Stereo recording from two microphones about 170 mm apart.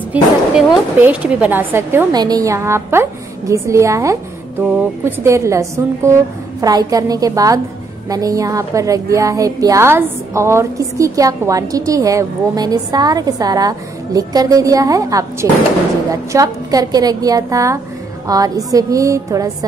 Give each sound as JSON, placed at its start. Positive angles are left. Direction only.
{"t": 0.1, "sound": "a woman's voice", "side_deg": -5}